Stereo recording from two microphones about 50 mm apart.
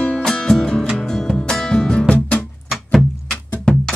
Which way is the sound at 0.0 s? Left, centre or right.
Centre.